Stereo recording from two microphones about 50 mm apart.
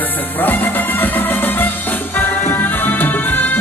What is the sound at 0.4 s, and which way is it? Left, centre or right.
Music, left.